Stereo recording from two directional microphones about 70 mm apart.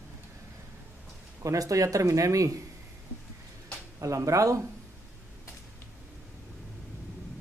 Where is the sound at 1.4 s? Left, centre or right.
Right.